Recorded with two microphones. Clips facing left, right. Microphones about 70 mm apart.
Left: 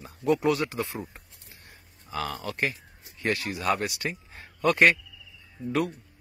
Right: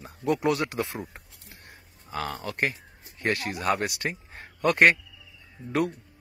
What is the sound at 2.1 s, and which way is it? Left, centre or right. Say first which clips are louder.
Speech: even; right.